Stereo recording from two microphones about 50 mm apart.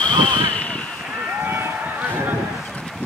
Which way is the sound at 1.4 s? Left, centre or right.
Right.